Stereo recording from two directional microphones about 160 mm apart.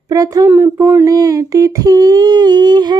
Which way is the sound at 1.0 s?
20° right (ahead or behind).